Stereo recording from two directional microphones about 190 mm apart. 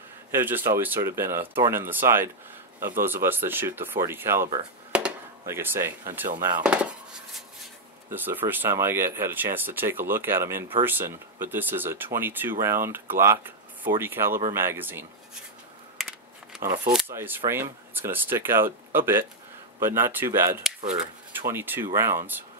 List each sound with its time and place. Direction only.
0.3 s speech: 10° right (ahead or behind)
1.4 s speech: 30° right (ahead or behind)
1.7 s speech: 10° right (ahead or behind)
4.9 s a sound: 10° right (ahead or behind)
8.1 s speech: 10° right (ahead or behind)
17.1 s speech: 10° right (ahead or behind)